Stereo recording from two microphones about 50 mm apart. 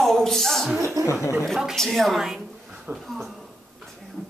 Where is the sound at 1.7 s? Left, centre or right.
Centre.